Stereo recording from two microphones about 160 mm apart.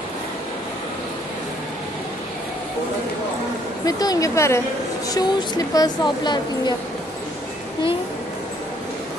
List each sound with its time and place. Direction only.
3.8 s speech: 20° left (ahead or behind)